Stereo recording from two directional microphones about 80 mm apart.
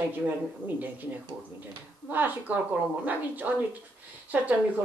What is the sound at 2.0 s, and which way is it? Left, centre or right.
A woman's voice, right.